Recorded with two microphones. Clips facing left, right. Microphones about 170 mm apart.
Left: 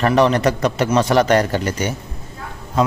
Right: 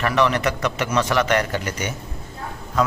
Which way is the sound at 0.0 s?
35° left (ahead or behind).